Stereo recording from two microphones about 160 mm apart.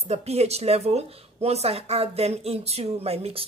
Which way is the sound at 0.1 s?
40° right (ahead or behind).